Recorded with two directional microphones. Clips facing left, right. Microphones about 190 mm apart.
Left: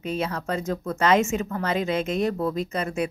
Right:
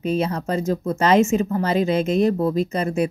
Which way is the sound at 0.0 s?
35° right (ahead or behind).